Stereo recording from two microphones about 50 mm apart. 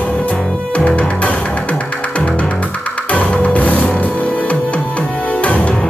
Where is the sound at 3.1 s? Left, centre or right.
Left.